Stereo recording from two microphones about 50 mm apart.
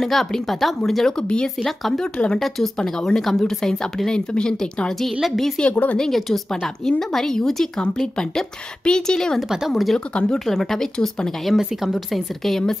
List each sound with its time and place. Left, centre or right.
0.0 s speech: centre
1.3 s speech: centre
2.3 s speech: centre
5.2 s speech: centre
5.6 s a woman's voice: left
5.9 s speech: centre
9.5 s speech: centre
9.9 s speech: centre
10.4 s speech: centre
11.5 s speech: centre